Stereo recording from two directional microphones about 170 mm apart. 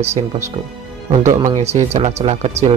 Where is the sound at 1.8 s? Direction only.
40° right (ahead or behind).